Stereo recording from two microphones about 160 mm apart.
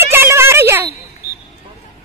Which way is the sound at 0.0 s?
15° right (ahead or behind).